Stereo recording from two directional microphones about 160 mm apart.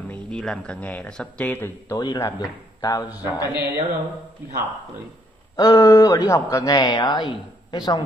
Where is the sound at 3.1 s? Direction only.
10° right (ahead or behind).